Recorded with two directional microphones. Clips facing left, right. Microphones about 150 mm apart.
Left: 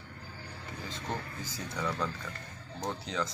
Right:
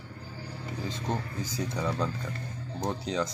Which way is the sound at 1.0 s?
20° right (ahead or behind).